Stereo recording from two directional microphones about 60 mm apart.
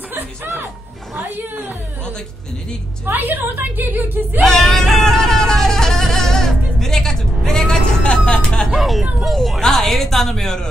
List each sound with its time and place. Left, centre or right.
0.1 s music: right
3.1 s a woman's voice: right
4.5 s music: centre
8.7 s a sound: centre
9.0 s speech: centre